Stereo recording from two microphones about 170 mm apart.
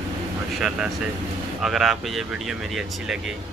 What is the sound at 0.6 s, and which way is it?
Speech, 5° right (ahead or behind).